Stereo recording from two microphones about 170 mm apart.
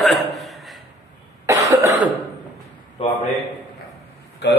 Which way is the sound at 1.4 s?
20° right (ahead or behind).